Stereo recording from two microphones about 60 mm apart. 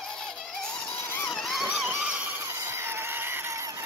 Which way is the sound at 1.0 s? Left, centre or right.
Left.